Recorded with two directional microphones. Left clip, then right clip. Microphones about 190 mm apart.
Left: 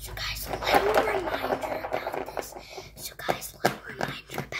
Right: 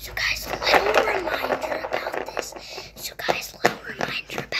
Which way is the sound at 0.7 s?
5° left (ahead or behind).